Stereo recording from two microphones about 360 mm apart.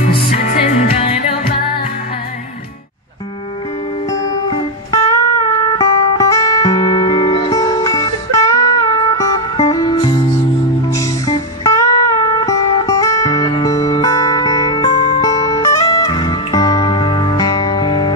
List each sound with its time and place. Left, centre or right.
0.0 s music: centre
4.1 s music: centre